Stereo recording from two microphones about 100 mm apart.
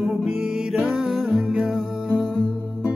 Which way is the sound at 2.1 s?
10° left (ahead or behind).